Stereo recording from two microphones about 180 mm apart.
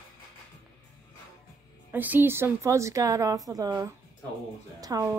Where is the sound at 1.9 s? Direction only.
10° right (ahead or behind).